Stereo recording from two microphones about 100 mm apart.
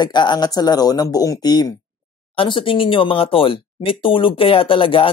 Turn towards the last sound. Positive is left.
turn(degrees=60)  # may be behind; listen again after turning